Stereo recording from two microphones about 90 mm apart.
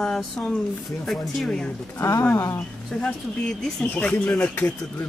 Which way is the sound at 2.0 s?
35° left (ahead or behind).